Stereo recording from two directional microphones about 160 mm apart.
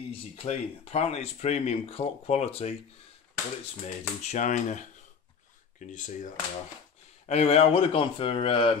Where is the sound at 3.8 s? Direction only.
45° left (ahead or behind).